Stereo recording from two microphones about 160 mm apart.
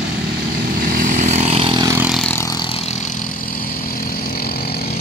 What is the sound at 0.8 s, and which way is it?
Vehicle, 60° right (ahead or behind).